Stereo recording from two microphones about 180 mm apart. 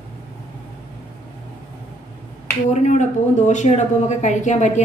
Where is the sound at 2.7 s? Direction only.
40° left (ahead or behind).